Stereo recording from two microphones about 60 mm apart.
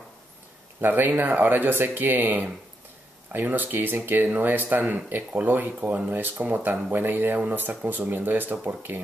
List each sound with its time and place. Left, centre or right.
0.7 s speech: right